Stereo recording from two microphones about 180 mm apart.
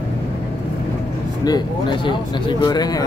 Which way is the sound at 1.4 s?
20° left (ahead or behind).